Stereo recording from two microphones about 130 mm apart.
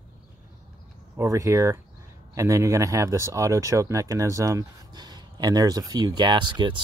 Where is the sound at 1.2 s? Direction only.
25° right (ahead or behind).